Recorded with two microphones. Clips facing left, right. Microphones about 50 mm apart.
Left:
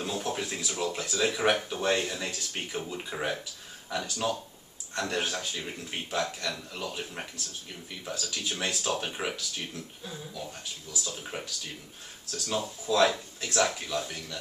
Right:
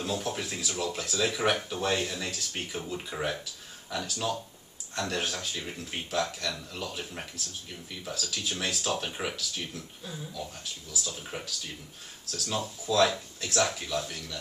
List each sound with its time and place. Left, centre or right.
0.0 s speech: centre